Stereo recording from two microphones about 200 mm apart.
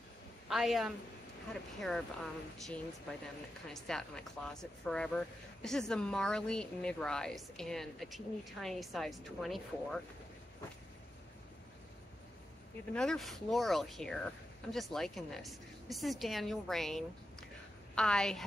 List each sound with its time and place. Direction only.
0.5 s speech: centre (ahead or behind)
12.9 s speech: 5° left (ahead or behind)